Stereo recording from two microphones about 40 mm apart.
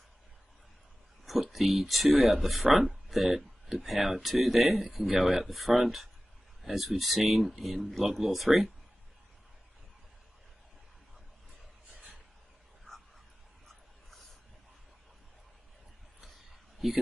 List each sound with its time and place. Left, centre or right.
1.2 s a sound: centre
1.8 s speech: centre
5.1 s speech: centre
5.4 s speech: centre
11.9 s a sound: right
16.8 s speech: centre